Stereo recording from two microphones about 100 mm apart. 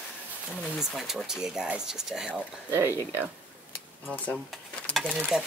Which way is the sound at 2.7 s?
25° right (ahead or behind).